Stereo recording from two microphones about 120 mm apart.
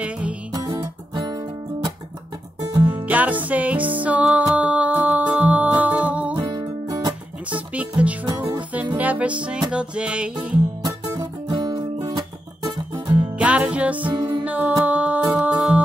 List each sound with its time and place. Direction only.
0.0 s music: 10° right (ahead or behind)
0.5 s music: 35° right (ahead or behind)
2.8 s music: 15° right (ahead or behind)
6.5 s music: 35° right (ahead or behind)
7.4 s music: 10° right (ahead or behind)
10.8 s music: 35° right (ahead or behind)
13.1 s music: 10° right (ahead or behind)